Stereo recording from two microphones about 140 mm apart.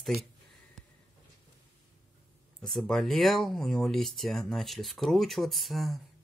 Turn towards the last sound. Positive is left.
turn(degrees=0)  # may be behind; listen again after turning